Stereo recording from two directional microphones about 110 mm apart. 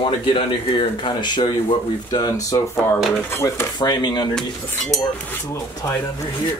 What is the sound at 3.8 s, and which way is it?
Speech, 40° left (ahead or behind).